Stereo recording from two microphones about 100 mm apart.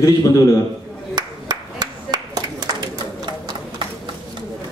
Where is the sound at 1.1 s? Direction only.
45° right (ahead or behind).